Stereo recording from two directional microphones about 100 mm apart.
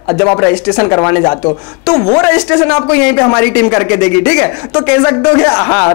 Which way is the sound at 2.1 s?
10° left (ahead or behind).